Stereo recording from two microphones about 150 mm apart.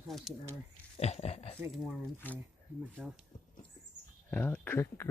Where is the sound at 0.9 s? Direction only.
45° left (ahead or behind).